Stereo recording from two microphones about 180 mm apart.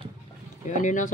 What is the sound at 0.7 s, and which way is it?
Speech, 45° left (ahead or behind).